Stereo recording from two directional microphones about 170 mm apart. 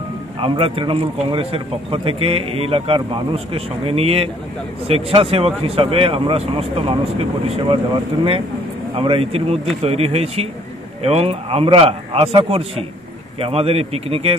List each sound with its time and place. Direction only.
0.4 s a man's voice: 30° right (ahead or behind)
8.9 s a man's voice: 35° right (ahead or behind)